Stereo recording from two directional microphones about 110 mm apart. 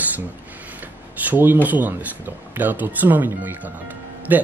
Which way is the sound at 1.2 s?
15° right (ahead or behind).